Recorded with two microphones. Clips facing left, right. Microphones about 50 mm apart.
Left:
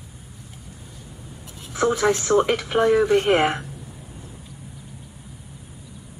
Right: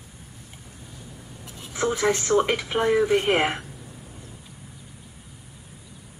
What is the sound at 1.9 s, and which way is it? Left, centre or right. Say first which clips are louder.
Speech: left 1 dB; centre.